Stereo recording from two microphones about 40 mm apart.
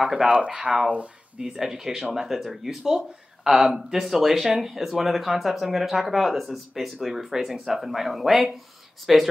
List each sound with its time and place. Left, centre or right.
0.0 s speech: centre
0.7 s speech: left
1.4 s speech: centre